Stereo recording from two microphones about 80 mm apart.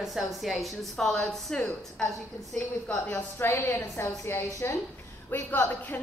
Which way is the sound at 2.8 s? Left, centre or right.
Centre.